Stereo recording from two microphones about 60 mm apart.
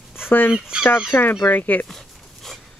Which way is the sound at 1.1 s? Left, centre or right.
Left.